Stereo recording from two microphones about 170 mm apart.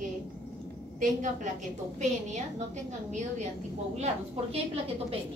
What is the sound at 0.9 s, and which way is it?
A woman's voice, 50° right (ahead or behind).